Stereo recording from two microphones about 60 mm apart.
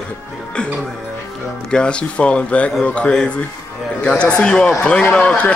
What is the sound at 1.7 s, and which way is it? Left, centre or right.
A man's voice, centre.